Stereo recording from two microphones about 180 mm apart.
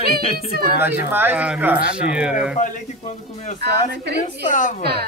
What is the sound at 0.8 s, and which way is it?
Speech, 10° right (ahead or behind).